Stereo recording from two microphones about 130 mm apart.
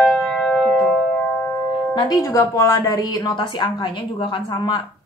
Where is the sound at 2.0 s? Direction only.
30° left (ahead or behind).